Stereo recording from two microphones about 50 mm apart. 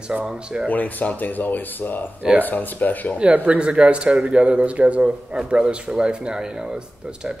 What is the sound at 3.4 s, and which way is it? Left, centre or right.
A man's voice, right.